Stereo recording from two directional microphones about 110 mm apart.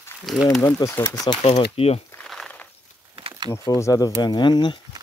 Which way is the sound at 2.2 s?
5° left (ahead or behind).